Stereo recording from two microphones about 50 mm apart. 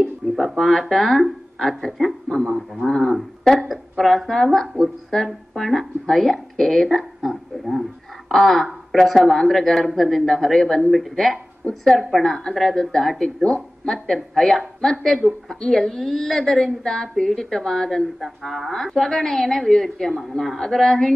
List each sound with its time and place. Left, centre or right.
0.2 s a woman's voice: centre